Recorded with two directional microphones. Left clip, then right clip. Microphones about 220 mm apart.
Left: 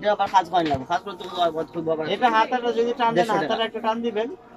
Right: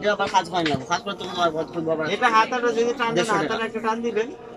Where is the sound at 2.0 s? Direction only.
15° left (ahead or behind).